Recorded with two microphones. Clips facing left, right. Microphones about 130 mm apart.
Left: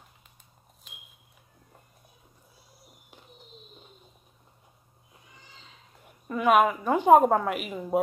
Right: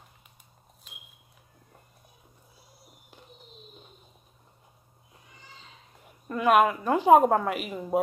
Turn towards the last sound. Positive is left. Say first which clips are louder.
# even
turn(degrees=0)  # may be behind; listen again after turning